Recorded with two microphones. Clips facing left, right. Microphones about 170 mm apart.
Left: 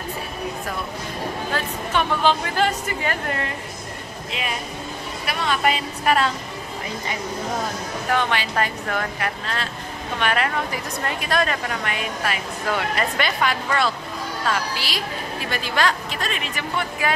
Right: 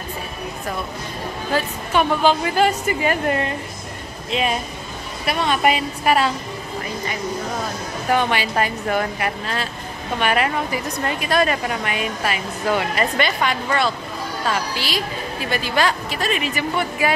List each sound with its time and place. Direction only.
1.5 s a woman's voice: 10° right (ahead or behind)
4.3 s a woman's voice: 25° right (ahead or behind); by 6.3 s 10° right (ahead or behind)
8.1 s a woman's voice: 10° right (ahead or behind)